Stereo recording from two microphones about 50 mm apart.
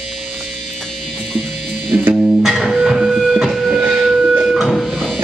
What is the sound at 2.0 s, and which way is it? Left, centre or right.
Music, right.